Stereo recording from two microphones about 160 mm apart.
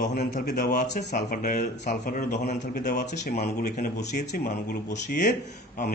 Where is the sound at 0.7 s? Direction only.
50° left (ahead or behind).